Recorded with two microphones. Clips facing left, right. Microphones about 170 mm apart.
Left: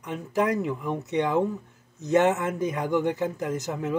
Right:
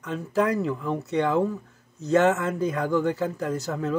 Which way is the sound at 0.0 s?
15° left (ahead or behind).